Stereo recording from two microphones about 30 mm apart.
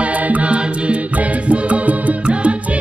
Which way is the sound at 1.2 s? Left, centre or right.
Right.